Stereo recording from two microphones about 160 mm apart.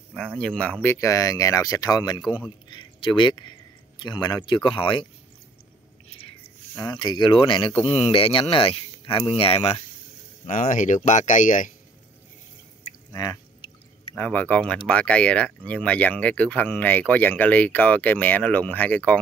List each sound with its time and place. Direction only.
0.4 s speech: 5° left (ahead or behind)
0.8 s speech: 20° left (ahead or behind)
6.7 s speech: 20° left (ahead or behind); by 11.7 s 50° left (ahead or behind)
13.1 s speech: 20° left (ahead or behind)
14.1 s speech: 10° left (ahead or behind)